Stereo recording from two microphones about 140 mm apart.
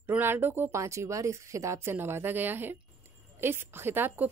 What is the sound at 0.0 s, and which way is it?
A woman's voice, 15° right (ahead or behind).